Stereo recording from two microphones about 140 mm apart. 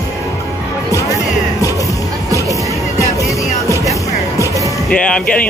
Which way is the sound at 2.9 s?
20° left (ahead or behind).